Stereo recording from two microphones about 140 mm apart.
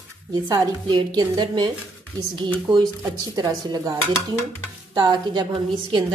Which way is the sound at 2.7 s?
25° right (ahead or behind).